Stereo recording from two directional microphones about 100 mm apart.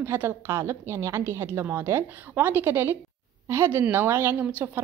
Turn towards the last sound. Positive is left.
turn(degrees=-15)  # may be behind; listen again after turning